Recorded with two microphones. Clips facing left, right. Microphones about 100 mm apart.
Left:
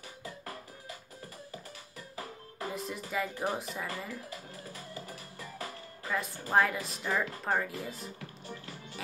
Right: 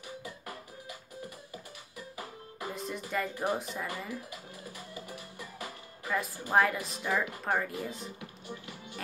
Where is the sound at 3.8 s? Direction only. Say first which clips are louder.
Right 1 dB; 20° right (ahead or behind).